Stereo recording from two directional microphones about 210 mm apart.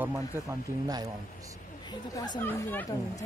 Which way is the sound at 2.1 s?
20° left (ahead or behind).